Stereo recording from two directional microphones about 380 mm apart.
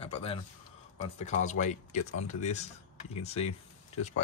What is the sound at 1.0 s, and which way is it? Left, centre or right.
Speech, centre.